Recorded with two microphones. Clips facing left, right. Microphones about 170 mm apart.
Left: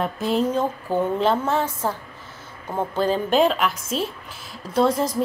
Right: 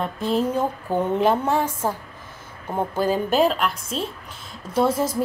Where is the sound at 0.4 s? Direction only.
10° right (ahead or behind).